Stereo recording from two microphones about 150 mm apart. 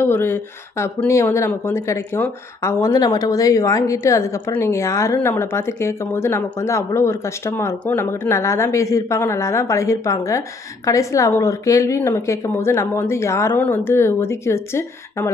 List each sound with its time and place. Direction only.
0.0 s a woman's voice: 15° left (ahead or behind)